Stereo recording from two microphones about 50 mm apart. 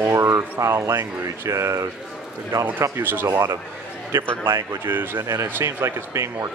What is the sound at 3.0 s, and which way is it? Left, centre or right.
Speech, right.